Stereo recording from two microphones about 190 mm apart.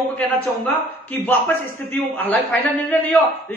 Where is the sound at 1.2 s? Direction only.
10° left (ahead or behind).